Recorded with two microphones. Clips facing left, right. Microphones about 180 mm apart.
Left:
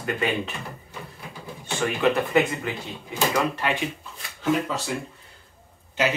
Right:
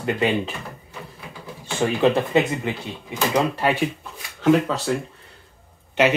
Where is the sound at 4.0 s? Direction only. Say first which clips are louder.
Right 7 dB; 65° right (ahead or behind).